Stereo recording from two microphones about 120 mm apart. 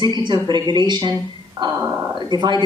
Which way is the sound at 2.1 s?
40° right (ahead or behind).